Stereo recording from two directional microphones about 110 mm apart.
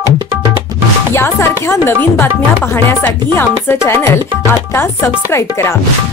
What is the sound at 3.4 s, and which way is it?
Music, 20° left (ahead or behind).